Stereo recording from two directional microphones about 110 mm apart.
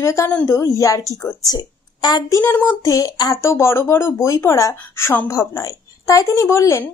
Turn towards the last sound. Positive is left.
turn(degrees=25)  # may be behind; listen again after turning